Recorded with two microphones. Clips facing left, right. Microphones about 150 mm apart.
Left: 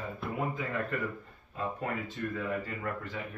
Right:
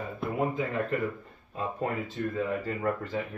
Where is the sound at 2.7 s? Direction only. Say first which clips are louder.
Right 7 dB; 35° right (ahead or behind).